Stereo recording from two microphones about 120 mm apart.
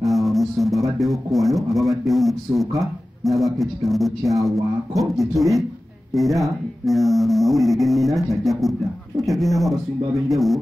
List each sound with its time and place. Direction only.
0.0 s speech: centre (ahead or behind)